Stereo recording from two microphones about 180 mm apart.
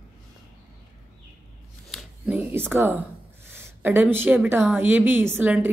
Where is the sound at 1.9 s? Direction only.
Centre (ahead or behind).